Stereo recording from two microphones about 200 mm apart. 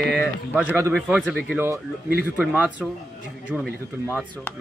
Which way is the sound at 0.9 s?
Centre (ahead or behind).